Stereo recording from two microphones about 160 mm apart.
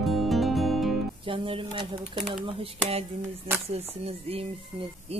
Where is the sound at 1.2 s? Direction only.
35° right (ahead or behind).